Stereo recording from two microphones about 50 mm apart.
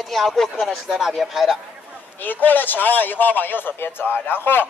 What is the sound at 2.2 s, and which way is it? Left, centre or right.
Speech, left.